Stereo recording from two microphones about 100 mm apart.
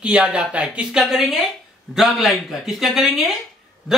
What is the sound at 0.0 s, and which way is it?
Speech, 10° right (ahead or behind).